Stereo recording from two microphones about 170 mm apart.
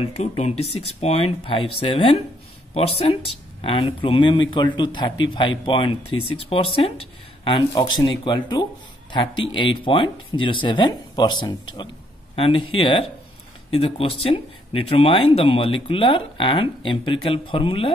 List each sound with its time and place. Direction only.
0.0 s speech: 40° left (ahead or behind)